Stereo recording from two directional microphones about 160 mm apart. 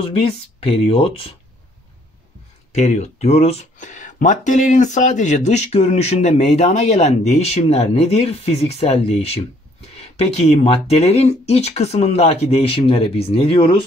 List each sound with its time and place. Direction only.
0.0 s speech: 35° left (ahead or behind)
2.7 s speech: 45° left (ahead or behind)